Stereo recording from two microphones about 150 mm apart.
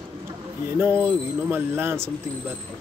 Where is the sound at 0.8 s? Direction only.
15° right (ahead or behind).